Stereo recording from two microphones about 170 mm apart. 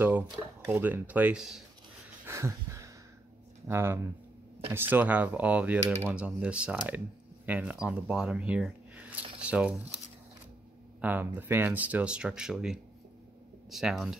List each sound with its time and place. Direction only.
0.7 s speech: 10° right (ahead or behind)
2.2 s a sound: 15° right (ahead or behind)
3.6 s speech: 15° right (ahead or behind)
11.0 s speech: 10° right (ahead or behind)